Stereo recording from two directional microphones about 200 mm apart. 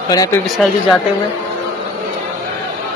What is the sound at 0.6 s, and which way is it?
Speech, centre (ahead or behind).